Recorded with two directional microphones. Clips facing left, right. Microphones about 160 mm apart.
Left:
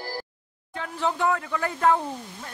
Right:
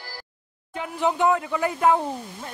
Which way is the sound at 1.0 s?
20° right (ahead or behind).